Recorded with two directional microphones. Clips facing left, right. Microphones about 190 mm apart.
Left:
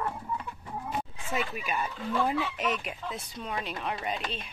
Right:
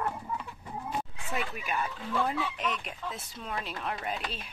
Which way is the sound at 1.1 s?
Centre (ahead or behind).